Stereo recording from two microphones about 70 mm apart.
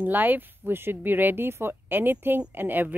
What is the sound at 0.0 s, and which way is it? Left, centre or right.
A woman's voice, right.